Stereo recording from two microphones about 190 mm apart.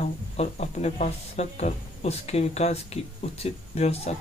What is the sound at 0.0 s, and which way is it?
Speech, 35° left (ahead or behind).